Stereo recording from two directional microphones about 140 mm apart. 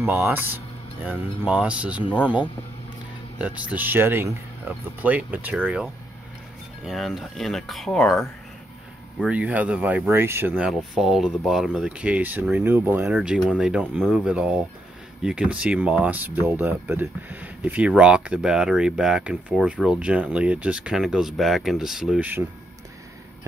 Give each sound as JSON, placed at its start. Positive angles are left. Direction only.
{"t": 0.0, "sound": "speech", "side_deg": -15}
{"t": 3.3, "sound": "speech", "side_deg": -10}
{"t": 9.2, "sound": "speech", "side_deg": -10}
{"t": 10.7, "sound": "speech", "side_deg": 0}
{"t": 13.1, "sound": "speech", "side_deg": -5}